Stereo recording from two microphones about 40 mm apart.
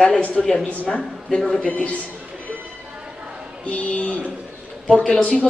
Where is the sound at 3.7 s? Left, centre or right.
Left.